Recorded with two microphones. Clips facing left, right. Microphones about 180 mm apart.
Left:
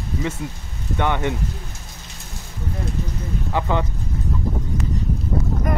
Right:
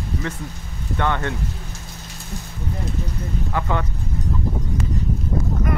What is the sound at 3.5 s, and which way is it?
Speech, 20° left (ahead or behind).